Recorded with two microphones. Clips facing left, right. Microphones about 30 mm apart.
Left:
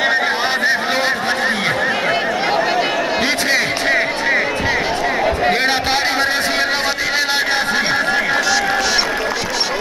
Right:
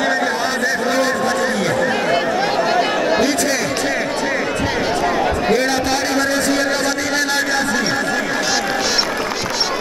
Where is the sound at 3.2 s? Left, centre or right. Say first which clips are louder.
Left 1 dB; left.